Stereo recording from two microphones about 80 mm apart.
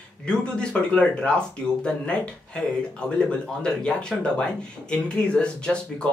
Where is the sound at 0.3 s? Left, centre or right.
Centre.